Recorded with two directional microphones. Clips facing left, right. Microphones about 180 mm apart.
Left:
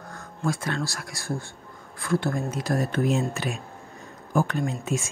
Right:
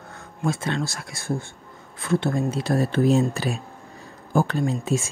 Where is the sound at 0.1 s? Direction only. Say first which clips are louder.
Right 2 dB; 25° right (ahead or behind).